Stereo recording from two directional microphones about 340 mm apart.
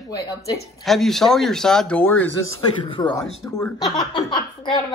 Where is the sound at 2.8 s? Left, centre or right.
Centre.